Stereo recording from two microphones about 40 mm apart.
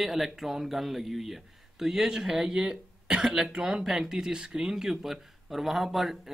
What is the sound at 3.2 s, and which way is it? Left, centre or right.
Speech, centre.